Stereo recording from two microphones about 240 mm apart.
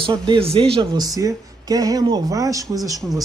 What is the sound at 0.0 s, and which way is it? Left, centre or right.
Speech, right.